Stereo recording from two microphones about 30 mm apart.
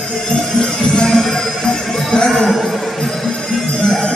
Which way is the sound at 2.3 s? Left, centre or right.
Centre.